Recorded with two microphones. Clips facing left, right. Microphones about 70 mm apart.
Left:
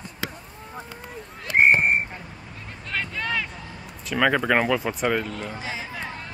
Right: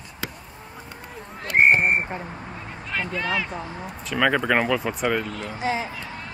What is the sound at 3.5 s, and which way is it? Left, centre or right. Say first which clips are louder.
Speech: right 7 dB; right.